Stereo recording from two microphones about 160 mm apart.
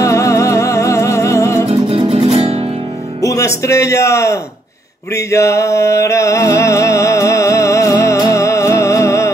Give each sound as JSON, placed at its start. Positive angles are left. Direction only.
{"t": 0.0, "sound": "music", "side_deg": 20}
{"t": 1.7, "sound": "music", "side_deg": -35}
{"t": 3.2, "sound": "speech", "side_deg": 20}
{"t": 5.1, "sound": "music", "side_deg": 20}